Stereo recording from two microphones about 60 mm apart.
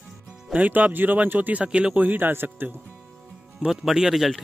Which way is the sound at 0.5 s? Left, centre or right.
Right.